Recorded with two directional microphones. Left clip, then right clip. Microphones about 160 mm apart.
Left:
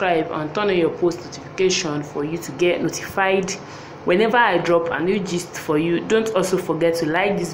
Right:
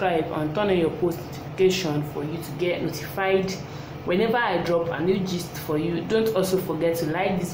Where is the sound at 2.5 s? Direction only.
25° left (ahead or behind).